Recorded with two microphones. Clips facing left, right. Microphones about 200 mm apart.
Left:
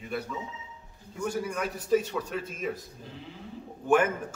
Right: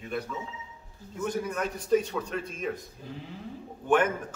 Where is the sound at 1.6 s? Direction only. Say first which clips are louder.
Right 1 dB; 5° left (ahead or behind).